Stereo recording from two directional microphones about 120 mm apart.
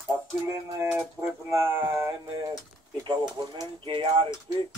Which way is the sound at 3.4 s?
35° right (ahead or behind).